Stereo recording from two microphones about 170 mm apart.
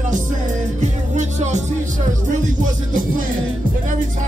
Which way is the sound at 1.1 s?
45° right (ahead or behind).